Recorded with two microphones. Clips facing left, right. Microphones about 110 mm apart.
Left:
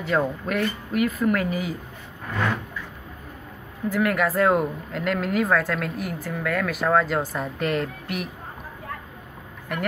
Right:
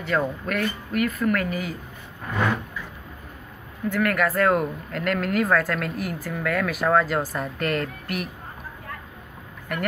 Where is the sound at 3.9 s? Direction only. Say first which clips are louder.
Even; 10° left (ahead or behind).